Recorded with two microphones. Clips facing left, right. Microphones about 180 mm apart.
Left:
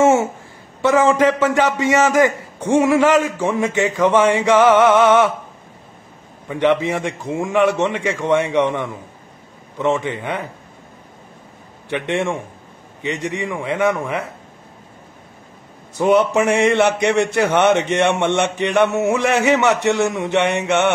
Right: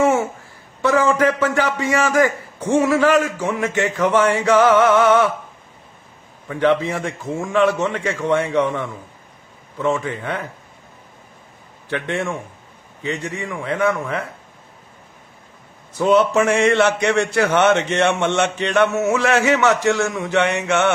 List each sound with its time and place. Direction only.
0.0 s a sound: 25° left (ahead or behind)
0.8 s a man's voice: 20° left (ahead or behind)
6.5 s a man's voice: 20° left (ahead or behind)
11.9 s a man's voice: 20° left (ahead or behind)
16.2 s a man's voice: 15° left (ahead or behind)